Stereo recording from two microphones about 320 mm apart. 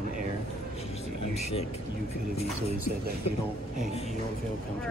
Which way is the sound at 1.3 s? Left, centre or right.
Centre.